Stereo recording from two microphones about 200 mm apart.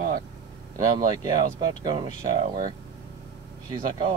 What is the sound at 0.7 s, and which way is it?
Speech, 20° right (ahead or behind).